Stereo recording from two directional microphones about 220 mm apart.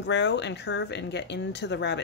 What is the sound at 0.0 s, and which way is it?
Speech, 50° left (ahead or behind).